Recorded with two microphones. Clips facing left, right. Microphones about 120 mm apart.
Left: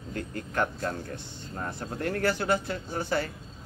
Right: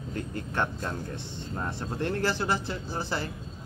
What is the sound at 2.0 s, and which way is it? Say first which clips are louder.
Speech: left 1 dB; 25° right (ahead or behind).